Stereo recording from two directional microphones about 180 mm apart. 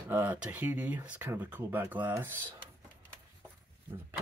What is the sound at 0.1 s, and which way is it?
Speech, 10° right (ahead or behind).